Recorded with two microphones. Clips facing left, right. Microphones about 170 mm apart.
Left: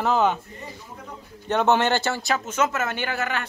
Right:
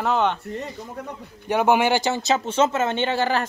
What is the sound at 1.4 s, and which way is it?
Speech, 10° right (ahead or behind).